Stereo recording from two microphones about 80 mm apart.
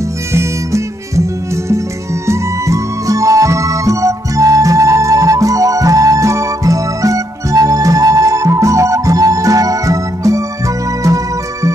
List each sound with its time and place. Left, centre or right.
0.3 s music: right
2.2 s music: right